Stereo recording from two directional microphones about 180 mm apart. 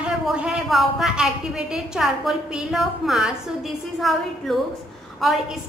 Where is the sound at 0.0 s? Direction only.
5° right (ahead or behind).